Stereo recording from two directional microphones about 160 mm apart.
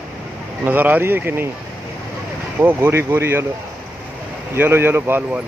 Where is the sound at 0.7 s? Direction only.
10° right (ahead or behind).